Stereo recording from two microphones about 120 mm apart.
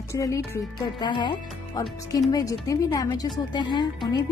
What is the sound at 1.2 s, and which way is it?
Speech, 40° left (ahead or behind).